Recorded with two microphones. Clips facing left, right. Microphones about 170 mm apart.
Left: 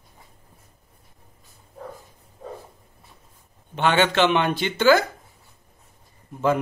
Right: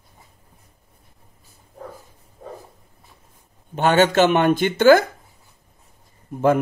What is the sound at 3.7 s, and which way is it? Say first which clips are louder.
Speech: right 4 dB; 40° right (ahead or behind).